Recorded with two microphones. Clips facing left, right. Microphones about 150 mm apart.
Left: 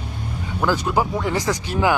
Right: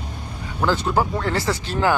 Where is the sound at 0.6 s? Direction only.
10° left (ahead or behind).